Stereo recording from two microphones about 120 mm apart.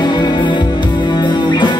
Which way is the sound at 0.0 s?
40° left (ahead or behind).